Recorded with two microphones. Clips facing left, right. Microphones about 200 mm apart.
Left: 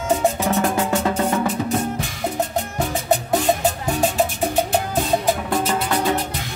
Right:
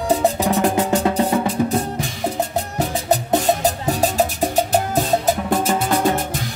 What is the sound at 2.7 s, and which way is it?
Music, 35° right (ahead or behind).